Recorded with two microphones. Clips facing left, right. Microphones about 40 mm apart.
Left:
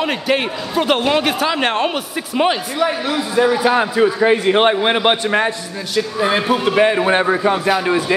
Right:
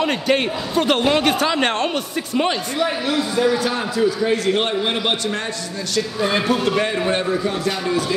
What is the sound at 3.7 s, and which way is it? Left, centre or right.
A man's voice, left.